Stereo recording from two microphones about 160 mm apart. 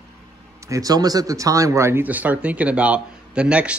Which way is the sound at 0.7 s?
20° right (ahead or behind).